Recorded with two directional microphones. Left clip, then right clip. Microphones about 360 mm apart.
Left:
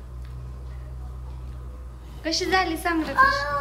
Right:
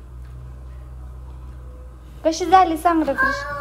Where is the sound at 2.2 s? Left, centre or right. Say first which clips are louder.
Right 8 dB; centre.